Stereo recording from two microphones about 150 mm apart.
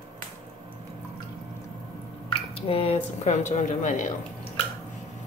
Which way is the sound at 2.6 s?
40° left (ahead or behind).